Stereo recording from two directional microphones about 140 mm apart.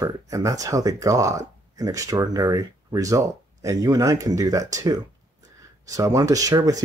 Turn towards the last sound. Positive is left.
turn(degrees=-25)  # may be behind; listen again after turning